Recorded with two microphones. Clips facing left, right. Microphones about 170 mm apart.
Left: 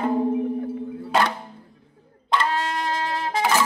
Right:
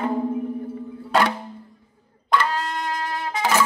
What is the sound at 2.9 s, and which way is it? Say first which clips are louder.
Wind instrument: left 2 dB; 40° left (ahead or behind).